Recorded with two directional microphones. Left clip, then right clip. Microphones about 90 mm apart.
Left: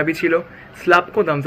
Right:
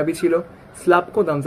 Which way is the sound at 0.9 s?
25° left (ahead or behind).